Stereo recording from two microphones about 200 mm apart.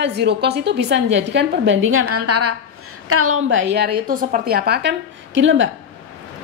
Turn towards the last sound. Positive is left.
turn(degrees=-70)  # may be behind; listen again after turning